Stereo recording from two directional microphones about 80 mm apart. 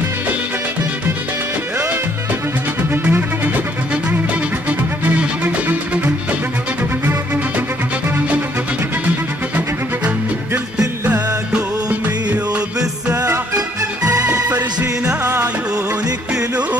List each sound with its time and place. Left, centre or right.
2.8 s music: right
4.6 s music: centre
11.1 s music: centre
13.1 s music: right